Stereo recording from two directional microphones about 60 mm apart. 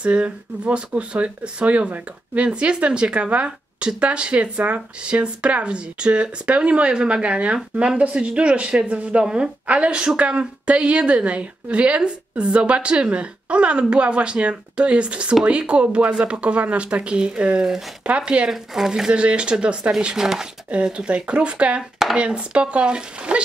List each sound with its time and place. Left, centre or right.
0.0 s speech: right
18.5 s speech: centre